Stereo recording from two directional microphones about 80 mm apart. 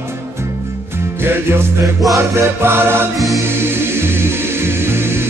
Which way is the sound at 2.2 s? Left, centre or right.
Right.